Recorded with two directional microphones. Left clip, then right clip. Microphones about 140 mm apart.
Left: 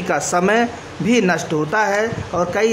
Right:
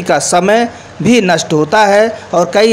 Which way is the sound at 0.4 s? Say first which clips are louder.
Right 6 dB; 15° right (ahead or behind).